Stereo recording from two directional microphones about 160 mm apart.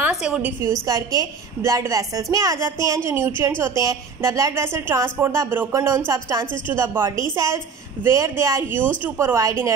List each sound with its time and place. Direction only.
0.0 s a woman's voice: 5° right (ahead or behind)